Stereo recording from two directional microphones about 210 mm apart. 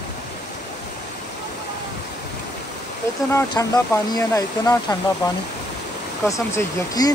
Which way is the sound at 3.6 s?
15° left (ahead or behind).